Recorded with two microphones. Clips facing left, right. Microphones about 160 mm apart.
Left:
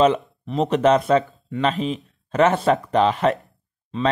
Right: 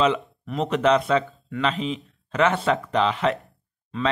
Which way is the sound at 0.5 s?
35° left (ahead or behind).